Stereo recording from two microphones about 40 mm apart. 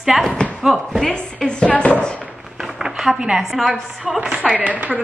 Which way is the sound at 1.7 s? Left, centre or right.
Left.